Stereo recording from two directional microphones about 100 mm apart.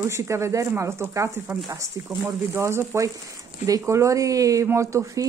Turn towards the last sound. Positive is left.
turn(degrees=-30)  # may be behind; listen again after turning